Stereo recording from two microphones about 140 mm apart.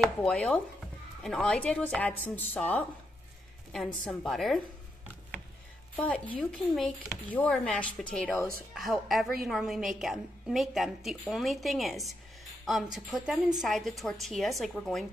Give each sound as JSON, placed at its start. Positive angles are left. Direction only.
{"t": 0.0, "sound": "a woman's voice", "side_deg": 5}
{"t": 5.9, "sound": "a woman's voice", "side_deg": 10}